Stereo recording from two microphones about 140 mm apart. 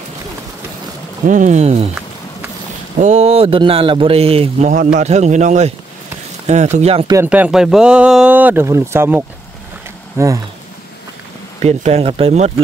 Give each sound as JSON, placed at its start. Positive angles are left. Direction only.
{"t": 1.2, "sound": "a man's voice", "side_deg": -60}
{"t": 3.0, "sound": "speech", "side_deg": -55}
{"t": 4.6, "sound": "a man's voice", "side_deg": -60}
{"t": 7.2, "sound": "speech", "side_deg": -10}
{"t": 11.6, "sound": "speech", "side_deg": -50}